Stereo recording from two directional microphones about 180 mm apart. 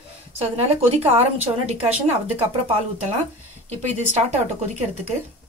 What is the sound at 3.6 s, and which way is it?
A woman's voice, 40° right (ahead or behind).